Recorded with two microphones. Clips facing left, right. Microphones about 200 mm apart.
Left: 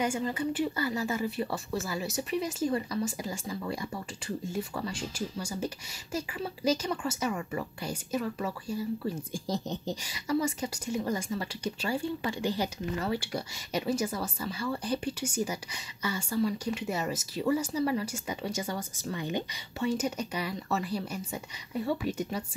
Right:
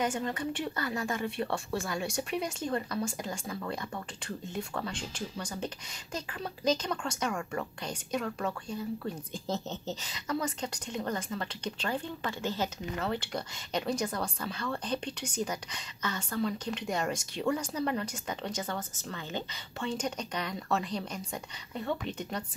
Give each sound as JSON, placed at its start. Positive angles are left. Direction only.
{"t": 0.0, "sound": "speech", "side_deg": 10}